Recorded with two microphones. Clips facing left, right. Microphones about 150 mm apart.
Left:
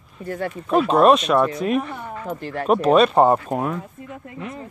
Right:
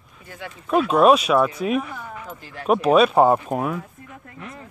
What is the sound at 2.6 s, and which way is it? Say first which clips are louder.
Speech: left 1 dB; 5° right (ahead or behind).